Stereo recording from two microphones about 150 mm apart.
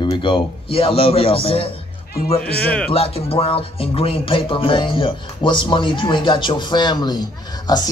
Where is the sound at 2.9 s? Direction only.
40° left (ahead or behind).